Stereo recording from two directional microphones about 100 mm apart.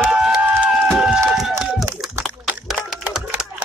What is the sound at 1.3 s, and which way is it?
Run, 5° right (ahead or behind).